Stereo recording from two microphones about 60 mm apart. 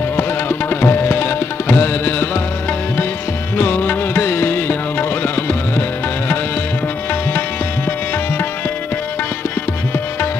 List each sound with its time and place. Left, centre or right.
0.1 s tabla: left
3.5 s music: left